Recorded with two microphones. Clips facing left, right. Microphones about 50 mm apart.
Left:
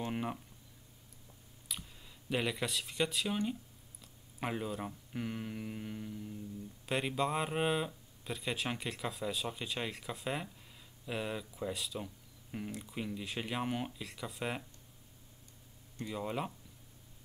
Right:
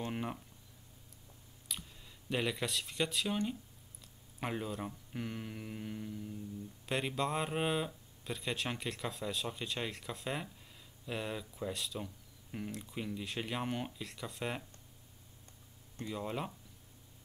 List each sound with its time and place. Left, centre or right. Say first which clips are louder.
0.0 s a sound: left 2 dB; centre
1.7 s speech: even; centre
16.1 s speech: left 1 dB; centre